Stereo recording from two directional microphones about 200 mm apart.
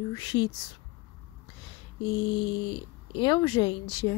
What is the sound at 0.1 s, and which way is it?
Speech, 20° left (ahead or behind).